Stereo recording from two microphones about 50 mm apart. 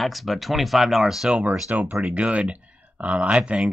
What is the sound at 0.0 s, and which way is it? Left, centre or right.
Speech, centre.